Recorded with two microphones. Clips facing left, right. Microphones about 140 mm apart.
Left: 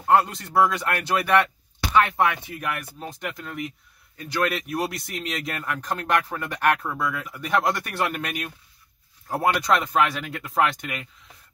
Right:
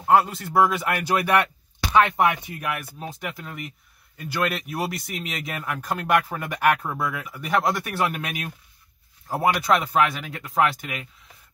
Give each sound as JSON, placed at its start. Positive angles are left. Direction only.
{"t": 0.0, "sound": "speech", "side_deg": -5}
{"t": 2.6, "sound": "speech", "side_deg": -5}